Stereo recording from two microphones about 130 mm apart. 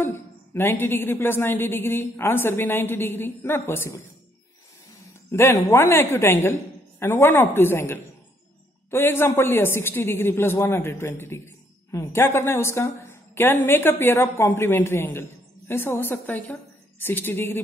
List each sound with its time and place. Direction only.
0.0 s a woman's voice: 15° left (ahead or behind)
5.3 s a man's voice: 20° left (ahead or behind)